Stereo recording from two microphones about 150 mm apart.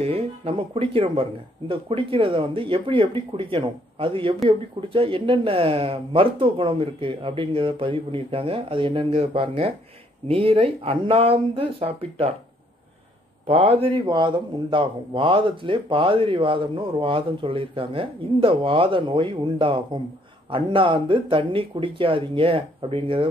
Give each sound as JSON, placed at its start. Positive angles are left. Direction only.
{"t": 0.0, "sound": "speech", "side_deg": -40}
{"t": 13.5, "sound": "speech", "side_deg": -40}